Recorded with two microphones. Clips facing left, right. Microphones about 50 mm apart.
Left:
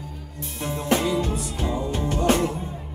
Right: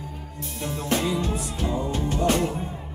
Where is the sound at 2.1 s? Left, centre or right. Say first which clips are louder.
Left 2 dB; centre.